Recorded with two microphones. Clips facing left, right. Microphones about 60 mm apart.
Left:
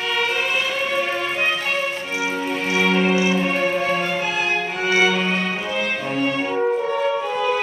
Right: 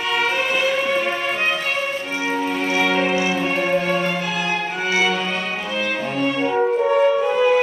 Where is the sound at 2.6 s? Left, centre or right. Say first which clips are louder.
Left 2 dB; centre.